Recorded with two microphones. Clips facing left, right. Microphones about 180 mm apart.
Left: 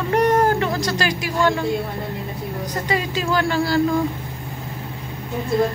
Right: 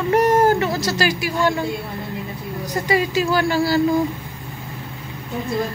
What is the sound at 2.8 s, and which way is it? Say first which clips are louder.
Speech: right 4 dB; 5° right (ahead or behind).